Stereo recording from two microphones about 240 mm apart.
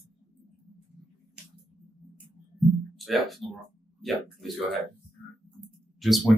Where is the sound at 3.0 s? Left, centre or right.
Centre.